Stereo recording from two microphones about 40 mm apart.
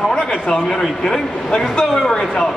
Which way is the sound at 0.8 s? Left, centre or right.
Centre.